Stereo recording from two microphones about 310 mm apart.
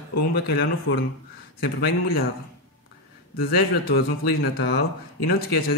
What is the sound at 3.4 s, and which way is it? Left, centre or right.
Speech, left.